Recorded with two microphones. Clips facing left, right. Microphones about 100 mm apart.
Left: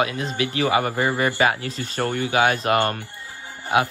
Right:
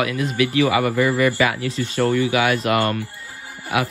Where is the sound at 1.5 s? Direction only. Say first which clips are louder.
Right 4 dB; 35° left (ahead or behind).